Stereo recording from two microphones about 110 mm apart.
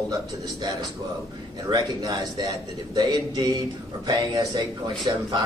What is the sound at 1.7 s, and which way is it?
A man's voice, 40° right (ahead or behind).